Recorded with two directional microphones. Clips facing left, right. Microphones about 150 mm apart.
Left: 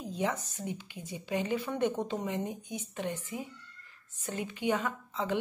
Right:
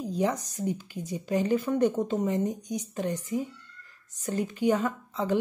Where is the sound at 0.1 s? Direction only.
40° right (ahead or behind).